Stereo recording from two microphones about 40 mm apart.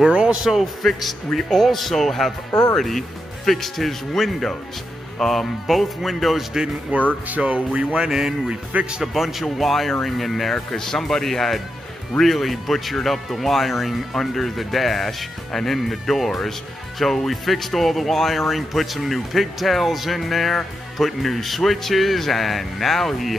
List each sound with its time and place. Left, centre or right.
0.1 s a sound: right
0.4 s speech: centre
6.9 s speech: right
8.1 s speech: centre
9.0 s speech: centre
10.5 s speech: centre